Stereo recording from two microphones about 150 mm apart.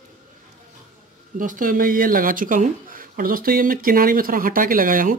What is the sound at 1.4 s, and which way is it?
Speech, 60° right (ahead or behind).